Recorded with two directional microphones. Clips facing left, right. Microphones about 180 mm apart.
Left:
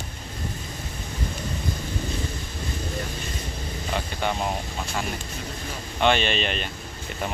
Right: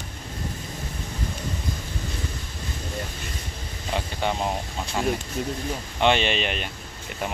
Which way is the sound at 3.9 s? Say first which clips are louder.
Right 1 dB; 20° right (ahead or behind).